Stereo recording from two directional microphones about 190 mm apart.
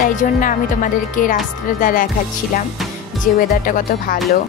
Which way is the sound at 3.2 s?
45° left (ahead or behind).